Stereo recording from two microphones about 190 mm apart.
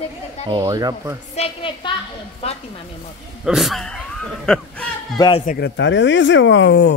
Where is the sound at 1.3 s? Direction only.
30° left (ahead or behind).